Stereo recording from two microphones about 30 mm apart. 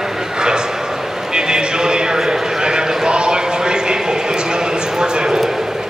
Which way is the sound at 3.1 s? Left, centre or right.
Right.